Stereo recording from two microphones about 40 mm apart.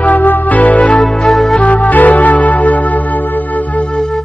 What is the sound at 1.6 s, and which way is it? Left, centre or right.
Music, left.